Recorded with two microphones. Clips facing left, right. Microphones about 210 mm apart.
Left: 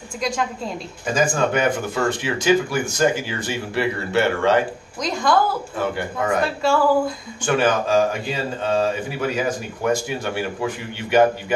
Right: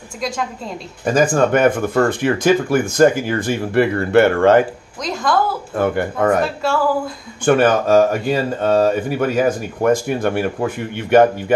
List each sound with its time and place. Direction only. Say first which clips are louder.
1.0 s speech: right 5 dB; 55° right (ahead or behind)
5.0 s a woman's voice: even; centre (ahead or behind)
5.8 s speech: right 9 dB; 55° right (ahead or behind)
6.6 s a woman's voice: left 4 dB; centre (ahead or behind)
7.4 s speech: right 6 dB; 55° right (ahead or behind)